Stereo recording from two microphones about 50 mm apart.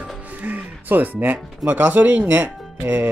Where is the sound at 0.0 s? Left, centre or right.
Right.